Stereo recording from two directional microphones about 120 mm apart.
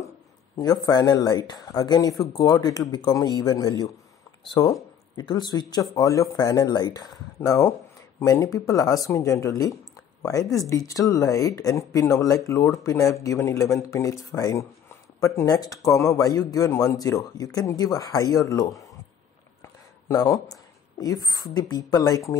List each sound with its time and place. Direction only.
0.6 s speech: 30° left (ahead or behind)
7.3 s speech: 25° left (ahead or behind)
19.6 s a sound: 30° left (ahead or behind)
21.0 s speech: 30° left (ahead or behind)